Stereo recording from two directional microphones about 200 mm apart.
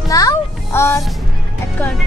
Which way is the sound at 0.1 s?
20° left (ahead or behind).